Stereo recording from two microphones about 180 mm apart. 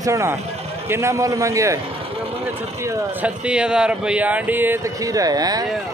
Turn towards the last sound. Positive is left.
turn(degrees=-20)  # may be behind; listen again after turning